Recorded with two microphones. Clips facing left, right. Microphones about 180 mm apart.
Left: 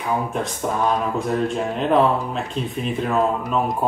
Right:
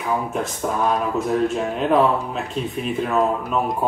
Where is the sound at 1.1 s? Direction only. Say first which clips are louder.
Right 1 dB; centre (ahead or behind).